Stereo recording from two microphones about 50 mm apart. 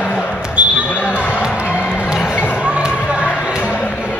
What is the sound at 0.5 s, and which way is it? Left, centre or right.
Basketball bounce, right.